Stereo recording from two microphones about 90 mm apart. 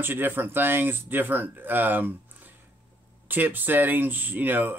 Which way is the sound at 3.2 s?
20° right (ahead or behind).